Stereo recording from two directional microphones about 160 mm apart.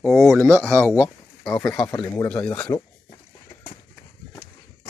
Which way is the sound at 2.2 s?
10° left (ahead or behind).